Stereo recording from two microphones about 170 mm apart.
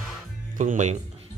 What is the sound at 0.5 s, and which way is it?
Speech, 50° right (ahead or behind).